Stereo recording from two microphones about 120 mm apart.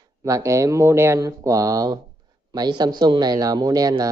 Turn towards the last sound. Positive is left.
turn(degrees=-30)  # may be behind; listen again after turning